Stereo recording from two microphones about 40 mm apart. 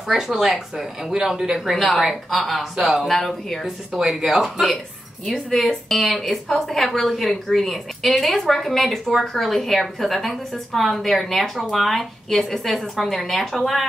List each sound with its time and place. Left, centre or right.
0.1 s speech: centre
1.8 s a woman's voice: centre
4.2 s speech: centre
5.2 s a woman's voice: centre